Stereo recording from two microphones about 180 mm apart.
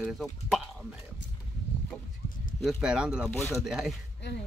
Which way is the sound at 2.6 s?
5° right (ahead or behind).